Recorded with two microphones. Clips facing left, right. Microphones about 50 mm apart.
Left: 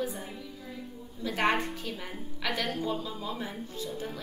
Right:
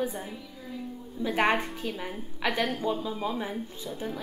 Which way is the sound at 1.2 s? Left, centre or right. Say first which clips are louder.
Right 2 dB; right.